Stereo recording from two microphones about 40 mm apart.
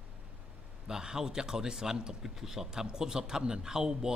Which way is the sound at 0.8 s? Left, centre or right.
Centre.